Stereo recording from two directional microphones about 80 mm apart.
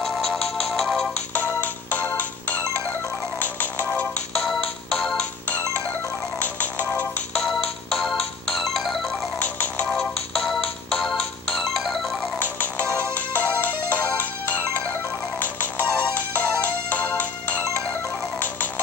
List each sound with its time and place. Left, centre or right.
0.0 s music: centre
1.3 s music: centre
4.3 s music: centre
6.4 s music: centre
7.3 s music: centre
9.4 s music: centre
10.3 s music: centre
12.4 s music: left
15.3 s ringtone: left